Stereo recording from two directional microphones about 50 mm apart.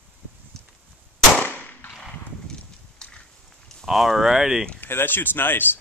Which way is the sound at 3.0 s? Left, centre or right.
Centre.